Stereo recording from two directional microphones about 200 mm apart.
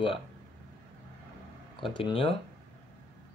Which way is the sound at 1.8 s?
25° left (ahead or behind).